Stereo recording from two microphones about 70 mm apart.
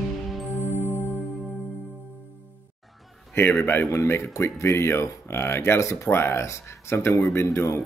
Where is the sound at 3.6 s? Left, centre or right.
Left.